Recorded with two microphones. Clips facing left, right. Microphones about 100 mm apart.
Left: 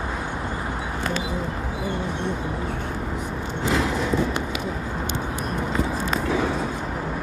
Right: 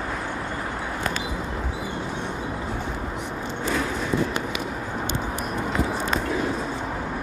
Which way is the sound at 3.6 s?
90° left.